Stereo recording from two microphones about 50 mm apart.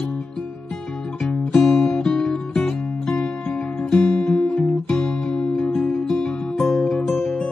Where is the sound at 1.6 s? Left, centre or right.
Centre.